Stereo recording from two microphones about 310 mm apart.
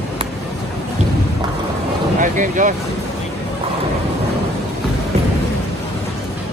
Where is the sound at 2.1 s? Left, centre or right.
Right.